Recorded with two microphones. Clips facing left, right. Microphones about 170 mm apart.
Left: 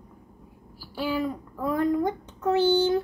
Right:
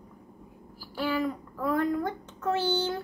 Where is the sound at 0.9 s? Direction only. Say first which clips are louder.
Left 1 dB; 10° left (ahead or behind).